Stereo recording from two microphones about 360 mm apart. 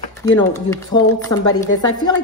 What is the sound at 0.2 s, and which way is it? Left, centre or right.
A woman's voice, centre.